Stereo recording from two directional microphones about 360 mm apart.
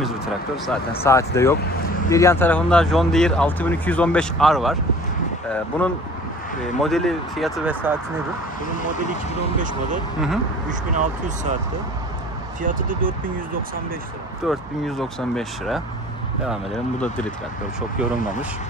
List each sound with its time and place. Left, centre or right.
1.0 s speech: centre
5.7 s speech: centre
10.7 s speech: centre
12.6 s speech: right
14.4 s speech: centre